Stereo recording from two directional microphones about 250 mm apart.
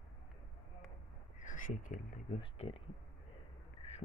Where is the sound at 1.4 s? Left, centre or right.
Left.